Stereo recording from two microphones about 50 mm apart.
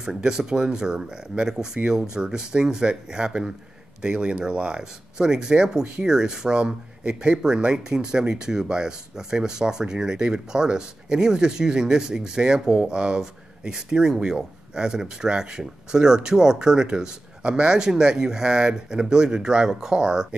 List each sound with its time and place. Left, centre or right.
0.0 s speech: centre